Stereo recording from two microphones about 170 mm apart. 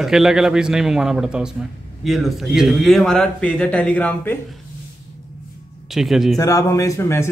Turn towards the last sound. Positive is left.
turn(degrees=15)  # may be behind; listen again after turning